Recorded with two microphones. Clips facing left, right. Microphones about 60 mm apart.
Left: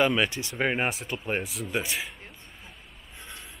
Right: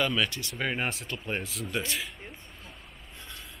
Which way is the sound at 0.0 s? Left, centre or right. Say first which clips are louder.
Left 4 dB; left.